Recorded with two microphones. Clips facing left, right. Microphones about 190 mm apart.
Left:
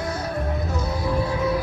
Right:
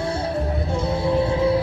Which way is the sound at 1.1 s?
30° right (ahead or behind).